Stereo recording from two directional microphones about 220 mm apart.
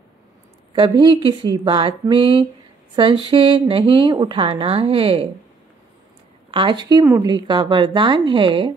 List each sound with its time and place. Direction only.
0.7 s speech: 20° right (ahead or behind)
6.5 s speech: 20° right (ahead or behind)